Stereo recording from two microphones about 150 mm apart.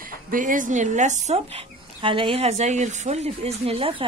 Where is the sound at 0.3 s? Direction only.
60° right (ahead or behind).